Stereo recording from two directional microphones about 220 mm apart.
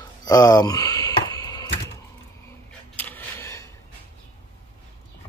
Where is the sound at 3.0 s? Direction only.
10° left (ahead or behind).